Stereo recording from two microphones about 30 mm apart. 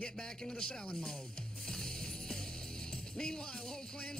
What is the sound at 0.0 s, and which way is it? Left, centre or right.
Speech, left.